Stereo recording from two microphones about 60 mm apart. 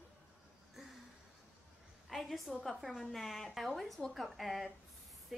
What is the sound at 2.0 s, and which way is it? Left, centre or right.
A woman's voice, centre.